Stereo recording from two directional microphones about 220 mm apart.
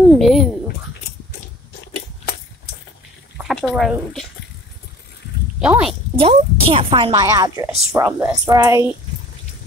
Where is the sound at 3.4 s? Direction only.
Centre (ahead or behind).